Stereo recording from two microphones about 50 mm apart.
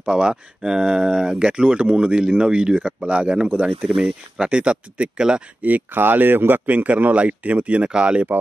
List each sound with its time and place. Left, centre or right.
0.0 s speech: centre
3.9 s speech: centre
5.6 s speech: right